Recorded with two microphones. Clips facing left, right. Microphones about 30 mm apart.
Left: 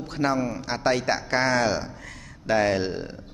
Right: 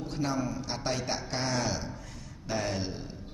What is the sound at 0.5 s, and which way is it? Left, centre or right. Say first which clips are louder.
A man's voice: left 9 dB; left.